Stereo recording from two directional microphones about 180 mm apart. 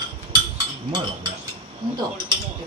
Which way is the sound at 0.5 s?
25° right (ahead or behind).